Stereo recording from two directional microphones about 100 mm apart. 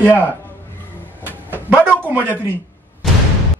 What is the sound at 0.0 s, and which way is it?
Speech, 20° left (ahead or behind).